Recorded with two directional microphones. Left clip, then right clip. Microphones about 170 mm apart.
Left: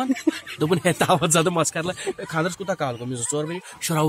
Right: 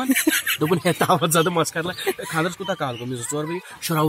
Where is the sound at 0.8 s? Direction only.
20° left (ahead or behind).